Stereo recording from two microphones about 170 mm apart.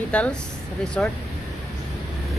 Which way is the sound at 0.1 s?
5° left (ahead or behind).